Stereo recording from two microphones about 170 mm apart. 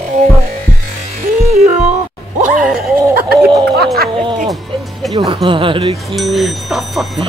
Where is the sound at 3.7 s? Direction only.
65° right (ahead or behind).